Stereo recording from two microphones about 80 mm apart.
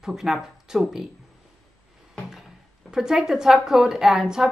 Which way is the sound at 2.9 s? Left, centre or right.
Centre.